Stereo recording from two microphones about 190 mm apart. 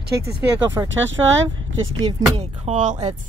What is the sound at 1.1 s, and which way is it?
Speech, 85° right.